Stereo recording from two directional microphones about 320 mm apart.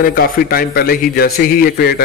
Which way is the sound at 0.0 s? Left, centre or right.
Left.